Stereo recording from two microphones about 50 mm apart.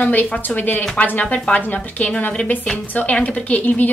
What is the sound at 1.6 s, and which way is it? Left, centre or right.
A woman's voice, left.